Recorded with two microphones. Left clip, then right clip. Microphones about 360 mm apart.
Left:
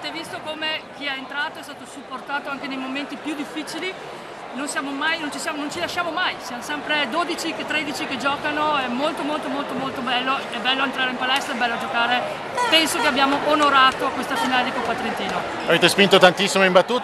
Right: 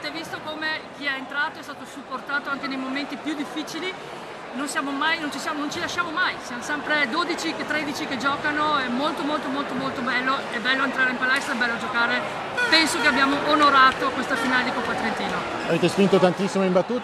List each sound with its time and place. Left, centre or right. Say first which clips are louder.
0.6 s a sound: left 1 dB; centre
2.3 s speech: even; centre
15.7 s speech: left 6 dB; left